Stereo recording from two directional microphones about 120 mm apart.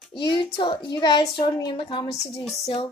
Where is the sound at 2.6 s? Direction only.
50° left (ahead or behind).